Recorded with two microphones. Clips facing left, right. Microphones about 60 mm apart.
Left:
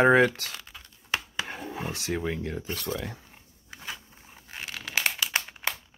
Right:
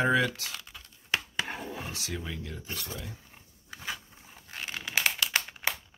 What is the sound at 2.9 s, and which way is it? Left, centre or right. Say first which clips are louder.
Speech: left 8 dB; left.